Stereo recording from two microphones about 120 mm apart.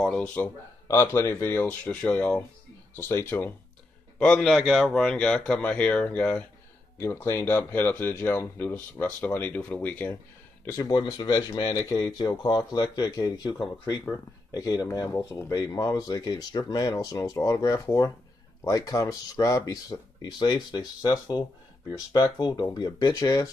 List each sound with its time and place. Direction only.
0.0 s speech: 10° left (ahead or behind)
0.8 s speech: 20° left (ahead or behind)
4.2 s speech: 5° left (ahead or behind)
10.8 s speech: 35° left (ahead or behind)